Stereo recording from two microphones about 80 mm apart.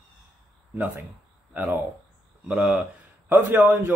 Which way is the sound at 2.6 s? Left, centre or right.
Centre.